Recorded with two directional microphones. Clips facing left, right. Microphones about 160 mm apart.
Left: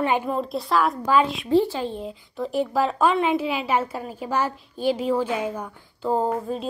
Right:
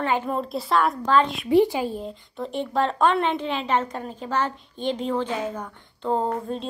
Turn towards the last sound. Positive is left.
turn(degrees=5)  # may be behind; listen again after turning